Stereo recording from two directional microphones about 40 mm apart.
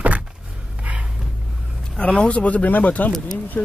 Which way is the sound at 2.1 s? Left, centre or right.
Left.